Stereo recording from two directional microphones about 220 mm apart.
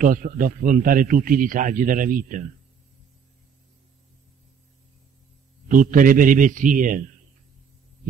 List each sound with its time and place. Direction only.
0.0 s a man's voice: 40° right (ahead or behind)
5.7 s a man's voice: 35° right (ahead or behind)